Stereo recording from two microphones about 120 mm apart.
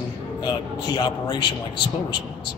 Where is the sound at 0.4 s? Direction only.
35° left (ahead or behind).